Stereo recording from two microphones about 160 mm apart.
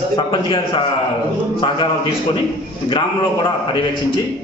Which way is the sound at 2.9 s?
30° left (ahead or behind).